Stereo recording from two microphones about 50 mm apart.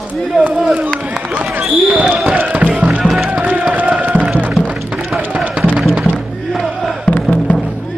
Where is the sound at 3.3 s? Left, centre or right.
Right.